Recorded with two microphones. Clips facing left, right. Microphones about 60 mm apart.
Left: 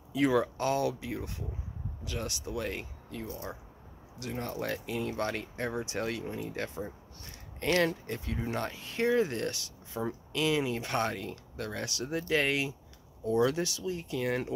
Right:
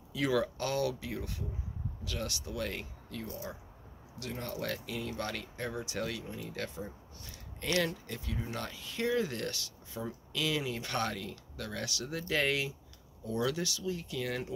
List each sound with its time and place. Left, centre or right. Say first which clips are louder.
0.1 s speech: left 4 dB; left
7.6 s speech: left 4 dB; left; by 12.7 s centre
13.5 s speech: left 2 dB; left